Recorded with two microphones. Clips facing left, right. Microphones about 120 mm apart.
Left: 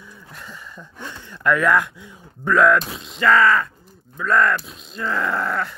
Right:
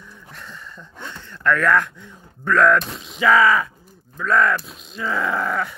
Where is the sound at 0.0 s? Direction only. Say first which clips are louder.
Even; 5° left (ahead or behind).